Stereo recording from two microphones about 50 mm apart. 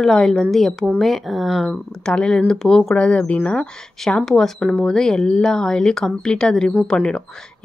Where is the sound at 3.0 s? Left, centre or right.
Left.